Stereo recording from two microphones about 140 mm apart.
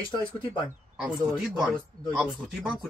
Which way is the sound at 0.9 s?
5° right (ahead or behind).